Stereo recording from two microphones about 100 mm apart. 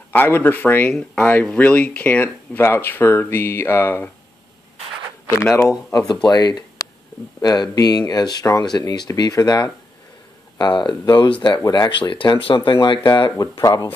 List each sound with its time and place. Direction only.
0.1 s speech: 20° left (ahead or behind)
5.4 s speech: 30° left (ahead or behind)
6.2 s speech: 40° left (ahead or behind)